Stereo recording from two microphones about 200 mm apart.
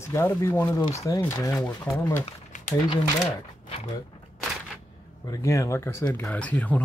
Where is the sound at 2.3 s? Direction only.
40° left (ahead or behind).